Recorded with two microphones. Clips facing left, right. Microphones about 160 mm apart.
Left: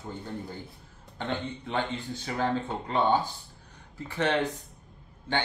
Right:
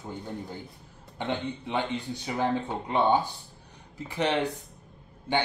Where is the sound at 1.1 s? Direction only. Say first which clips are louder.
Right 2 dB; 15° right (ahead or behind).